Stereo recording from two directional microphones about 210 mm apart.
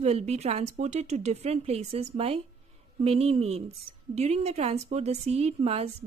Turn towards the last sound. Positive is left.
turn(degrees=-30)  # may be behind; listen again after turning